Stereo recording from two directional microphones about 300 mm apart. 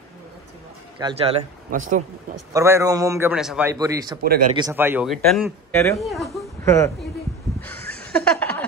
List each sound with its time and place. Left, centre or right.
0.9 s speech: centre
2.5 s a man's voice: centre
7.6 s a sound: centre